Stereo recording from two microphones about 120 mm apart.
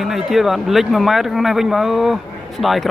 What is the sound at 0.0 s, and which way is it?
Speech, centre (ahead or behind).